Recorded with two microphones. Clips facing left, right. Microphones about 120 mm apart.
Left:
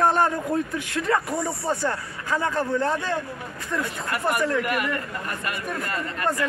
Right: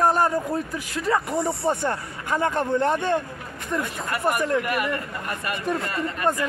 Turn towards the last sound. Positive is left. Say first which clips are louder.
# right 2 dB
turn(degrees=-25)  # may be behind; listen again after turning